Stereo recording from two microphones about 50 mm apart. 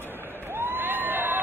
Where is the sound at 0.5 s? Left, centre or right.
Right.